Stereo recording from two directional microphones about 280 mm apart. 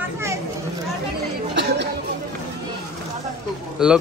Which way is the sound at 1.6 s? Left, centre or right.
Right.